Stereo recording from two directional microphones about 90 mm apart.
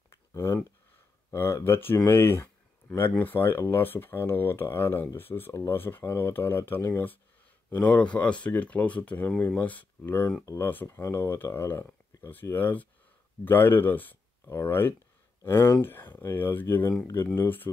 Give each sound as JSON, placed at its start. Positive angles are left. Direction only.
{"t": 0.1, "sound": "a sound", "side_deg": 30}
{"t": 1.3, "sound": "speech", "side_deg": 30}
{"t": 7.7, "sound": "speech", "side_deg": 15}